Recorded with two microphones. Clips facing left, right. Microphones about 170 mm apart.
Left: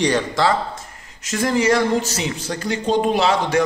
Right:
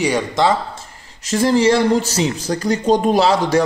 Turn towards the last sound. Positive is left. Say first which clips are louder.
# right 3 dB
turn(degrees=-35)  # may be behind; listen again after turning